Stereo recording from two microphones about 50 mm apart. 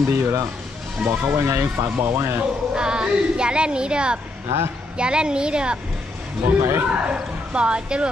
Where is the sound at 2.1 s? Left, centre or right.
Right.